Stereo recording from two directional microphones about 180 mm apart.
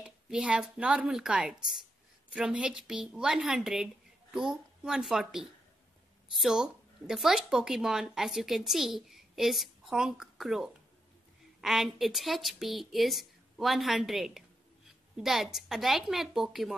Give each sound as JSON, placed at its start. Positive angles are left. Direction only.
{"t": 0.0, "sound": "speech", "side_deg": -5}